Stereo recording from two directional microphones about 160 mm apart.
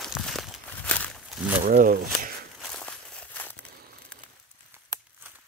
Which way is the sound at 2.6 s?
5° left (ahead or behind).